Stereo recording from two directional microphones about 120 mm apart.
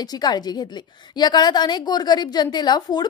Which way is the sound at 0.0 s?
35° left (ahead or behind).